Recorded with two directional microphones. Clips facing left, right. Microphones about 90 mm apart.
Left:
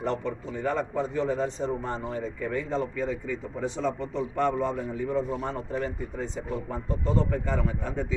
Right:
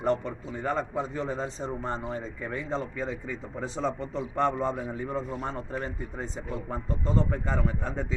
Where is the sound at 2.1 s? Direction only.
30° right (ahead or behind).